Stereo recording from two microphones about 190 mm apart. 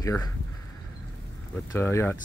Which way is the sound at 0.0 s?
15° left (ahead or behind).